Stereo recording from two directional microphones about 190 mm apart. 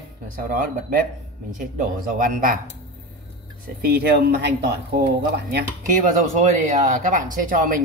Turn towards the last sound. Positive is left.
turn(degrees=-45)  # may be behind; listen again after turning